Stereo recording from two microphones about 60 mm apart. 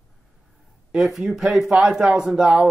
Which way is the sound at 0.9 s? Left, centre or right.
Centre.